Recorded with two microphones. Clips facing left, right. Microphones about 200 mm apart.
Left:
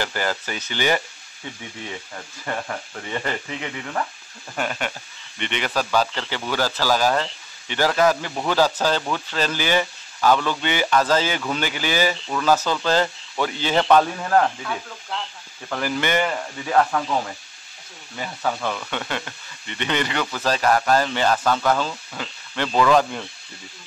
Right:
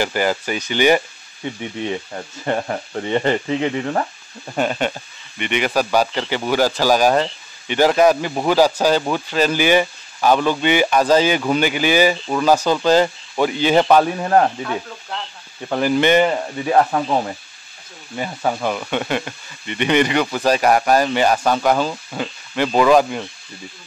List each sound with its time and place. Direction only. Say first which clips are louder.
0.0 s speech: right 6 dB; 15° right (ahead or behind); by 4.1 s 35° right (ahead or behind)
4.6 s speech: right 7 dB; 25° right (ahead or behind)
5.4 s speech: right 6 dB; 15° right (ahead or behind)
14.1 s speech: right 4 dB; 30° right (ahead or behind)
15.7 s speech: right 8 dB; 20° right (ahead or behind)